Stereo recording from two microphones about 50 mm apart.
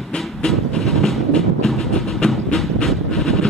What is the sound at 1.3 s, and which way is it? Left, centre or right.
Train, centre.